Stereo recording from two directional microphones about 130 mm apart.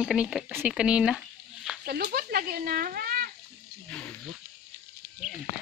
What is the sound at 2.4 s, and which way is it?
Speech, 90° right.